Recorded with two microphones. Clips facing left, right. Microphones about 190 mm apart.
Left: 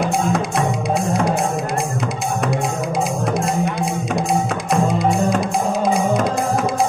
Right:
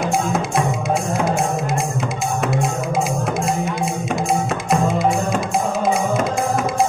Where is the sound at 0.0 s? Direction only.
Centre (ahead or behind).